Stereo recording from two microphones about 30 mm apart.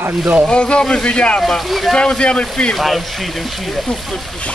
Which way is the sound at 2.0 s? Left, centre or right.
Left.